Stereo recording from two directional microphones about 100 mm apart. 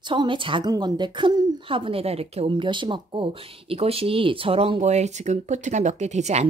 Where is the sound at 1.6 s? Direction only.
60° right (ahead or behind); by 5.4 s 90° right.